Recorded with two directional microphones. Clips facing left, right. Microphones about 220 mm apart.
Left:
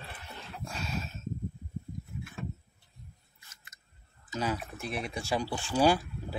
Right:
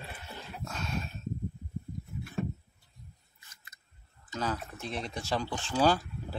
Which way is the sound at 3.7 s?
60° right (ahead or behind).